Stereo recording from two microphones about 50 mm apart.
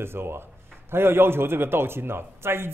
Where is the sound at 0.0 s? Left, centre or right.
Right.